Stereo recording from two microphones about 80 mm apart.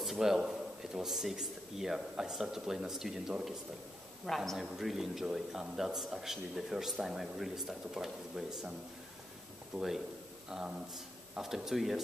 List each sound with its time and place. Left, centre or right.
0.0 s a man's voice: centre
9.8 s a man's voice: centre